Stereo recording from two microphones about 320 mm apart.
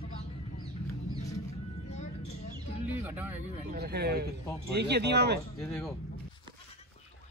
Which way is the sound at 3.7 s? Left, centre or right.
Right.